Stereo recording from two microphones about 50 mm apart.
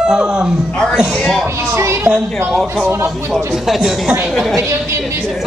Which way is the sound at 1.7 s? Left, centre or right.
Right.